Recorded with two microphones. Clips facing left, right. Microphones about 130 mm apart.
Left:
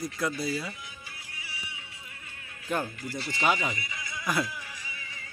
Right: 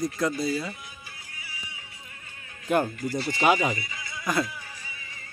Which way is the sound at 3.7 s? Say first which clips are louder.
Right 5 dB; 30° right (ahead or behind).